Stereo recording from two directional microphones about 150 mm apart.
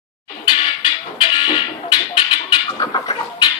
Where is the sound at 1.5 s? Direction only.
30° left (ahead or behind).